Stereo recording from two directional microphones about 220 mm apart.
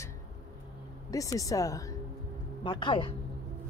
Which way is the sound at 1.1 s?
15° left (ahead or behind).